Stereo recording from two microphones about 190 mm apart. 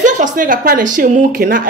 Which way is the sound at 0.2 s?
45° right (ahead or behind).